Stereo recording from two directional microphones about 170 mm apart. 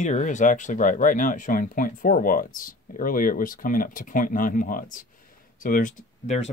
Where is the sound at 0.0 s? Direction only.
45° left (ahead or behind).